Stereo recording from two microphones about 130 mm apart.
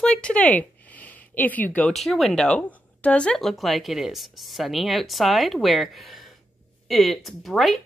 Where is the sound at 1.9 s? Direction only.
Centre (ahead or behind).